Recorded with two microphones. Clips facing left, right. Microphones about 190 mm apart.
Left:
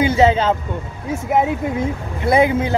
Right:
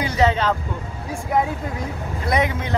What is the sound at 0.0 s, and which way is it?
Speech, 25° left (ahead or behind).